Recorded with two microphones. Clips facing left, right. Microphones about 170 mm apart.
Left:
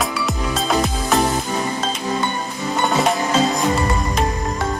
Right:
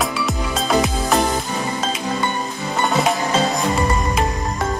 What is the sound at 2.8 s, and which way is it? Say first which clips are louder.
Music: even; centre (ahead or behind).